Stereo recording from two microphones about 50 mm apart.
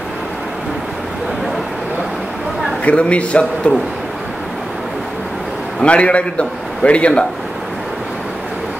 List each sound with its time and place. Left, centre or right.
2.8 s a man's voice: left
5.8 s a man's voice: left